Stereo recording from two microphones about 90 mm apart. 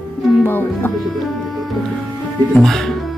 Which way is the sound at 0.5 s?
20° left (ahead or behind).